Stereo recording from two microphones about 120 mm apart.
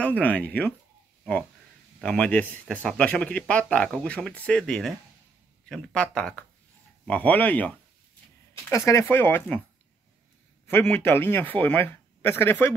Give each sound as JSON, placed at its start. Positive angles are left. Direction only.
{"t": 0.0, "sound": "speech", "side_deg": 10}
{"t": 2.0, "sound": "speech", "side_deg": 10}
{"t": 8.6, "sound": "speech", "side_deg": 25}
{"t": 10.7, "sound": "a man's voice", "side_deg": 20}